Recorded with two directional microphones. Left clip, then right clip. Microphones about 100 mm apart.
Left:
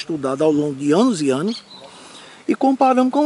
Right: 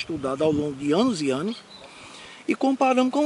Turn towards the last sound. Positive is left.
turn(degrees=-5)  # may be behind; listen again after turning